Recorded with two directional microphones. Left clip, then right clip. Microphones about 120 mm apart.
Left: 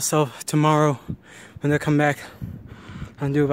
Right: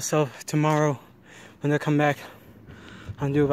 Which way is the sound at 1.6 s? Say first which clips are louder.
Left 2 dB; 35° left (ahead or behind).